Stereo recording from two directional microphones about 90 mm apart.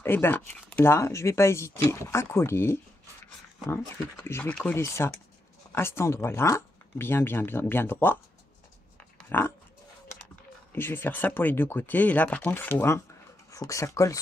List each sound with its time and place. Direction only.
0.0 s speech: 25° left (ahead or behind)
9.3 s speech: 25° left (ahead or behind)
10.7 s speech: 25° left (ahead or behind)
13.5 s speech: 40° left (ahead or behind)